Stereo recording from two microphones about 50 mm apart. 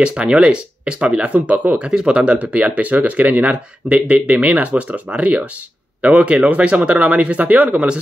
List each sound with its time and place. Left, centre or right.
0.0 s speech: right